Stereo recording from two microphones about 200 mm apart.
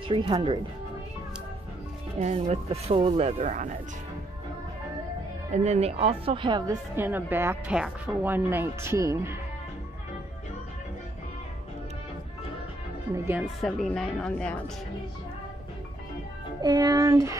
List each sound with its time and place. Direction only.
0.1 s speech: 25° right (ahead or behind)
2.1 s speech: 30° right (ahead or behind)
5.5 s speech: 35° right (ahead or behind)
7.0 s speech: 10° right (ahead or behind)
13.1 s speech: 10° right (ahead or behind)
13.6 s a woman's voice: centre (ahead or behind)
16.6 s speech: 20° right (ahead or behind)